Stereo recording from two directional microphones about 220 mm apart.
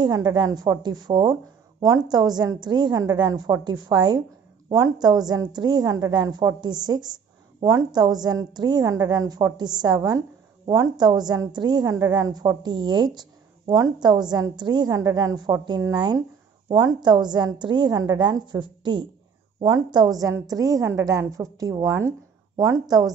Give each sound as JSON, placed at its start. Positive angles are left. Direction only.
{"t": 0.0, "sound": "a woman's voice", "side_deg": -20}